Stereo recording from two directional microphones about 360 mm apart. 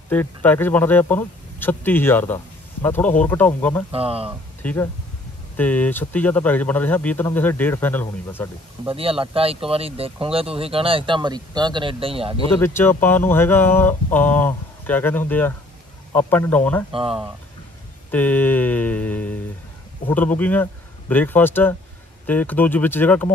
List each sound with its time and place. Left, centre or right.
0.1 s speech: centre
3.9 s speech: centre
4.6 s speech: centre
8.8 s speech: centre
12.6 s speech: centre
16.9 s speech: centre
18.1 s speech: centre